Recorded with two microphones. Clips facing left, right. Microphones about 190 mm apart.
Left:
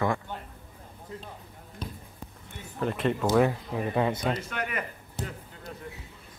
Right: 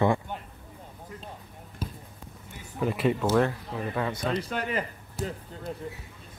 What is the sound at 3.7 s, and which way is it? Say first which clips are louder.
Speech: left 3 dB; 20° left (ahead or behind).